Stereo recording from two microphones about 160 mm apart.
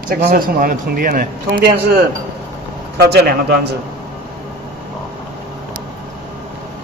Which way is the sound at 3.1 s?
90° right.